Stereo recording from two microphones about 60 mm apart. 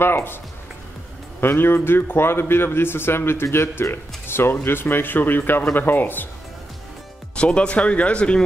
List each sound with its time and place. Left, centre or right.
0.0 s speech: left
1.4 s speech: left
7.3 s speech: centre